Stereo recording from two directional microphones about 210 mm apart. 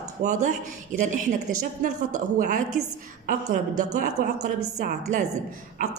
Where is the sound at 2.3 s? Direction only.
40° right (ahead or behind).